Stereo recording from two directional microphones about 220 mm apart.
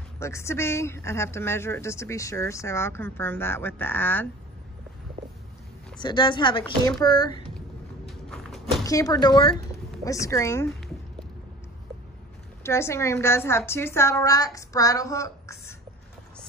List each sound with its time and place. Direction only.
0.2 s speech: 10° left (ahead or behind)
5.9 s speech: 20° left (ahead or behind)
8.1 s a sound: centre (ahead or behind)
8.8 s speech: 15° left (ahead or behind)
12.6 s speech: 10° left (ahead or behind)